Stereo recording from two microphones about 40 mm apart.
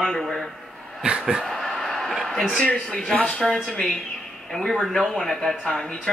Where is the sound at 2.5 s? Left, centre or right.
Left.